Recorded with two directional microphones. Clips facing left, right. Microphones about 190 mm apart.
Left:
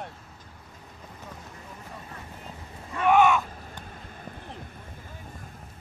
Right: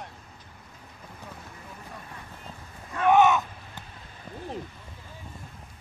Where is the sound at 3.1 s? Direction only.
20° right (ahead or behind).